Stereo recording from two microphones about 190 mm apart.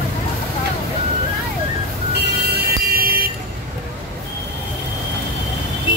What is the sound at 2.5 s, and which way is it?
Music, 50° right (ahead or behind).